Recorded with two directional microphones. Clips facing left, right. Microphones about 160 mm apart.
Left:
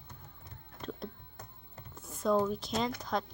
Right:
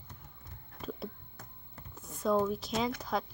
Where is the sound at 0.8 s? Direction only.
5° right (ahead or behind).